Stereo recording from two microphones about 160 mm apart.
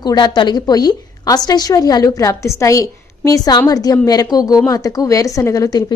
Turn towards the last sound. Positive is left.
turn(degrees=20)  # may be behind; listen again after turning